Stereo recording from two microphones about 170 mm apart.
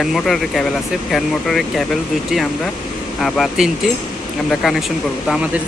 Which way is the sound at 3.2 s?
Centre (ahead or behind).